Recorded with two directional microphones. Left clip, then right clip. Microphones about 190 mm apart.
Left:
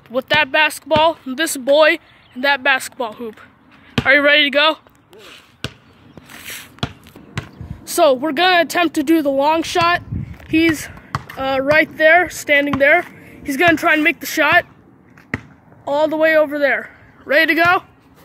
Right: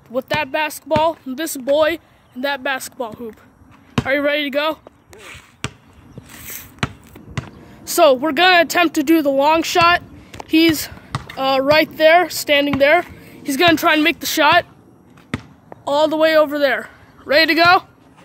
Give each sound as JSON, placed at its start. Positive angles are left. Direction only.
{"t": 0.1, "sound": "speech", "side_deg": -5}
{"t": 6.3, "sound": "a sound", "side_deg": -5}
{"t": 7.8, "sound": "speech", "side_deg": -5}
{"t": 10.5, "sound": "speech", "side_deg": -20}
{"t": 11.1, "sound": "a sound", "side_deg": -5}
{"t": 11.3, "sound": "a woman's voice", "side_deg": -20}
{"t": 15.8, "sound": "speech", "side_deg": -20}
{"t": 16.7, "sound": "speech", "side_deg": -5}